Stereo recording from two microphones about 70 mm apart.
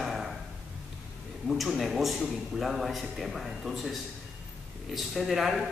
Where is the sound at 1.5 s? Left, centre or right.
Centre.